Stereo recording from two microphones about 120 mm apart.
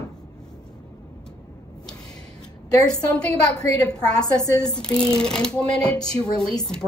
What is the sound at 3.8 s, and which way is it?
A woman's voice, 5° left (ahead or behind).